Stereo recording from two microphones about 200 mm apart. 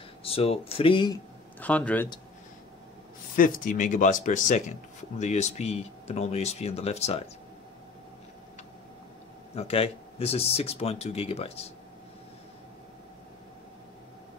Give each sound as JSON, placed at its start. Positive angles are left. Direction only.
{"t": 0.2, "sound": "speech", "side_deg": 30}
{"t": 1.6, "sound": "speech", "side_deg": 5}
{"t": 3.3, "sound": "speech", "side_deg": 40}
{"t": 9.6, "sound": "speech", "side_deg": 30}